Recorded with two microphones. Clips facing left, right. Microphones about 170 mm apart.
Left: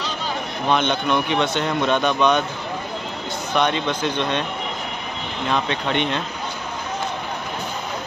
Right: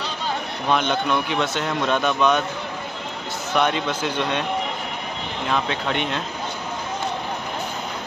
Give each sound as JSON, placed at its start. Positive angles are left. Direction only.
{"t": 0.7, "sound": "speech", "side_deg": 0}
{"t": 3.5, "sound": "speech", "side_deg": -5}
{"t": 5.5, "sound": "speech", "side_deg": -5}